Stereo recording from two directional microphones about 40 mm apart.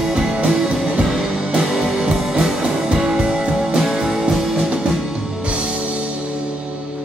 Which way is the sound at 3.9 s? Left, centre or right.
Centre.